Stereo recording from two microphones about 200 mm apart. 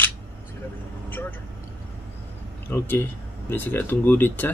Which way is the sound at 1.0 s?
10° left (ahead or behind).